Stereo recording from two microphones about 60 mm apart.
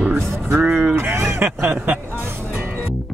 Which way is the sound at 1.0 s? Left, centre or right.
Right.